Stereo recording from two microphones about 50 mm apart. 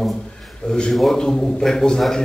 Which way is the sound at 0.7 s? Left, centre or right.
Centre.